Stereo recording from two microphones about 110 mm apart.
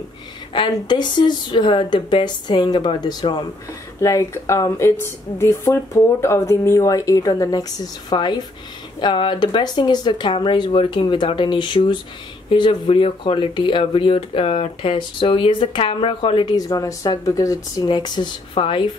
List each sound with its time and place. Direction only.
0.6 s speech: 45° left (ahead or behind)
4.0 s speech: 30° left (ahead or behind); by 16.5 s 50° left (ahead or behind)
16.5 s speech: 35° left (ahead or behind)
18.6 s speech: 50° left (ahead or behind)